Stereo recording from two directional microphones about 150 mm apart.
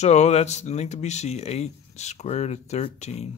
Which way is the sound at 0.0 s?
50° left (ahead or behind).